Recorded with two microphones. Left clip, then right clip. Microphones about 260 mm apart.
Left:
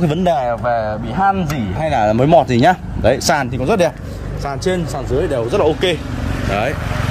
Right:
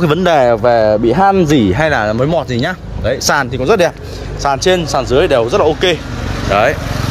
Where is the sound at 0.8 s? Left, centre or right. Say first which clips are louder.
Right 8 dB; right.